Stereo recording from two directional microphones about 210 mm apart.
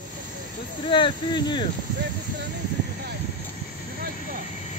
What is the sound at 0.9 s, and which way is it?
Speech, 20° left (ahead or behind).